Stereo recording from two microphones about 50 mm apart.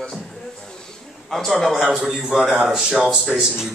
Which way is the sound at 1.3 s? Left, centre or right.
Centre.